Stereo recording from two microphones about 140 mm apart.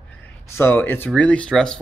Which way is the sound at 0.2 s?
15° left (ahead or behind).